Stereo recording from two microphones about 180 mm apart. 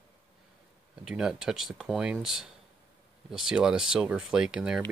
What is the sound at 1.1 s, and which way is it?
Speech, 5° right (ahead or behind).